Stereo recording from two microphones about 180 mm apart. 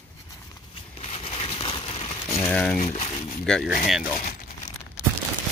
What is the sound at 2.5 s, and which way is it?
Speech, 5° left (ahead or behind).